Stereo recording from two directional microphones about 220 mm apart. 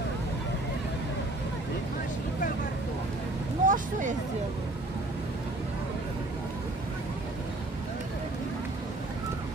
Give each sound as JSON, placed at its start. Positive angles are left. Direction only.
{"t": 3.6, "sound": "vehicle", "side_deg": -35}